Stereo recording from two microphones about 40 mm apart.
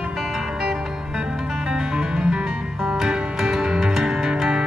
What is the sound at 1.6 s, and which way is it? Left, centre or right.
Music, centre.